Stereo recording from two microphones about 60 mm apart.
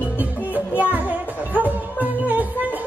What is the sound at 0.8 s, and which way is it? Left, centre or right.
Music, right.